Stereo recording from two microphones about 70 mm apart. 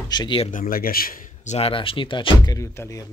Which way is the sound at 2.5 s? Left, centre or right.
Left.